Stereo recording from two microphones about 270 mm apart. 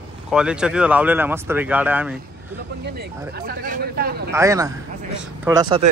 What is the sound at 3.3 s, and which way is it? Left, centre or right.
Speech, right.